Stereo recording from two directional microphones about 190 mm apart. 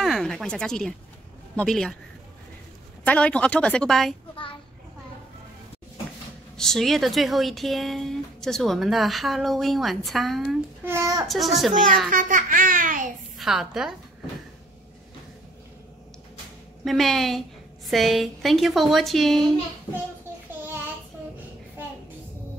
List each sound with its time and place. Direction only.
0.0 s speech: centre (ahead or behind)
3.1 s speech: 5° left (ahead or behind)
6.5 s speech: centre (ahead or behind)
10.9 s a child's voice: 15° right (ahead or behind)
11.2 s speech: centre (ahead or behind)
12.1 s speech: 45° right (ahead or behind)
13.4 s speech: centre (ahead or behind)
16.8 s speech: centre (ahead or behind)